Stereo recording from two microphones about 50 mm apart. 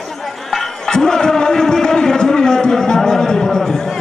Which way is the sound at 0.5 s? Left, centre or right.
Centre.